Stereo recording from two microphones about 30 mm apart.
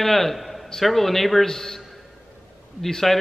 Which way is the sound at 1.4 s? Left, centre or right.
Centre.